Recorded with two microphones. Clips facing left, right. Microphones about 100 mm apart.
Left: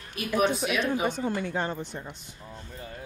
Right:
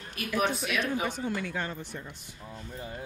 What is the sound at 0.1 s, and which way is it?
A woman's voice, 25° left (ahead or behind).